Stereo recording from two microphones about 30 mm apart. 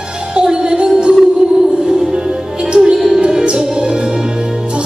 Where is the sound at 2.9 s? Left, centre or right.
Centre.